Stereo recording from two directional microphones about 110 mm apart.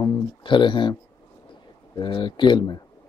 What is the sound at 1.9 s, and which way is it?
Speech, 45° left (ahead or behind).